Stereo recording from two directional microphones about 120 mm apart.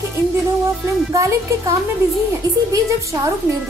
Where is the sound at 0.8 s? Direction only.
25° right (ahead or behind).